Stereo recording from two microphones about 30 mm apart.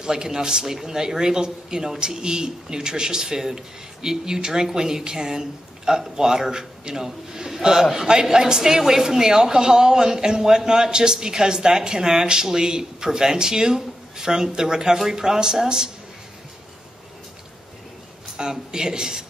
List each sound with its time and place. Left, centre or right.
0.0 s a man's voice: right
18.3 s speech: right